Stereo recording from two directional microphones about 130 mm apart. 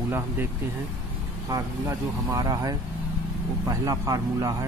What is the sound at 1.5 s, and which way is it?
Speech, 30° right (ahead or behind).